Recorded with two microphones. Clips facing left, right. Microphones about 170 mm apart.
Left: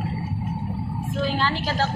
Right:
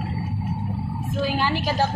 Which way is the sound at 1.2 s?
15° right (ahead or behind).